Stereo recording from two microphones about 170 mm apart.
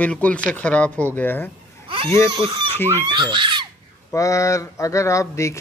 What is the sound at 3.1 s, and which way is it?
Speech, 25° right (ahead or behind).